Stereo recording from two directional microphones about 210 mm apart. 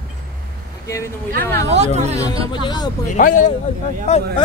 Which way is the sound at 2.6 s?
20° left (ahead or behind).